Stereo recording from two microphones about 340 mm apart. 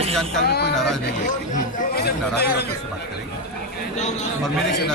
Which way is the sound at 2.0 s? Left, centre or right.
Left.